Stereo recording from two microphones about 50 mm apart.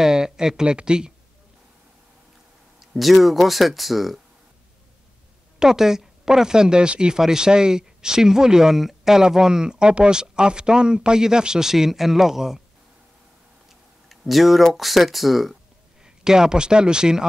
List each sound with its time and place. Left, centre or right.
0.0 s speech: centre
2.8 s speech: centre
5.6 s speech: centre
14.0 s speech: centre
16.0 s speech: centre